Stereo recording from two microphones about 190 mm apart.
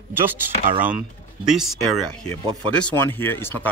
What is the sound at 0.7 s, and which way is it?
Speech, 45° right (ahead or behind).